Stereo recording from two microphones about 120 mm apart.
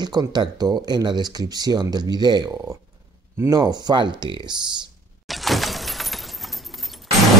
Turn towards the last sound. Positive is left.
turn(degrees=0)  # may be behind; listen again after turning